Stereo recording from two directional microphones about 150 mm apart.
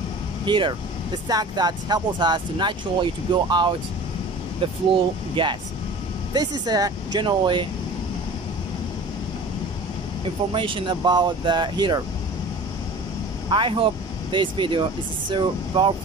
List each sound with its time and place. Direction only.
0.5 s speech: 35° right (ahead or behind)
5.3 s speech: 35° right (ahead or behind)
10.5 s speech: 35° right (ahead or behind)
13.5 s speech: 35° right (ahead or behind)